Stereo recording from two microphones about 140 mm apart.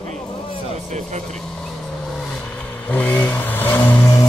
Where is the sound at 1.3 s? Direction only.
5° left (ahead or behind).